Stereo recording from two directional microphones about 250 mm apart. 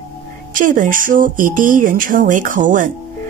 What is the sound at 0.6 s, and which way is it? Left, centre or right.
Speech, right.